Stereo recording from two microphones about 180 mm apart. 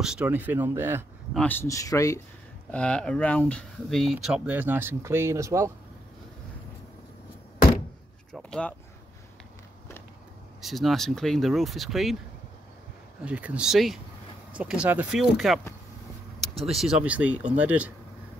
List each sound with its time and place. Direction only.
0.0 s speech: 5° right (ahead or behind)
1.3 s speech: 10° left (ahead or behind)
2.7 s speech: 5° left (ahead or behind); by 5.7 s 15° right (ahead or behind)
8.3 s speech: 5° left (ahead or behind)
10.6 s speech: centre (ahead or behind)
13.2 s speech: 5° right (ahead or behind)